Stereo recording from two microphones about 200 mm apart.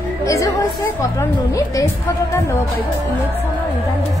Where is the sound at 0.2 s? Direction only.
15° left (ahead or behind).